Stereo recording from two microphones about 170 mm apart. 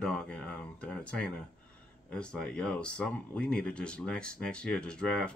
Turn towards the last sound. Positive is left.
turn(degrees=5)  # may be behind; listen again after turning